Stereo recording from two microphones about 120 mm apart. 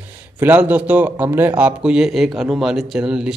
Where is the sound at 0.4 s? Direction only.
15° right (ahead or behind).